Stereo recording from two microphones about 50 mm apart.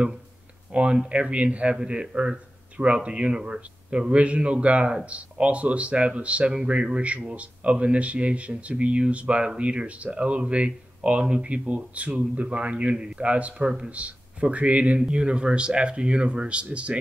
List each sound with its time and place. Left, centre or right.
0.7 s speech: right